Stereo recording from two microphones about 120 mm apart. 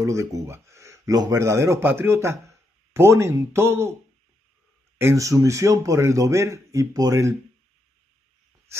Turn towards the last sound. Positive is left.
turn(degrees=-25)  # may be behind; listen again after turning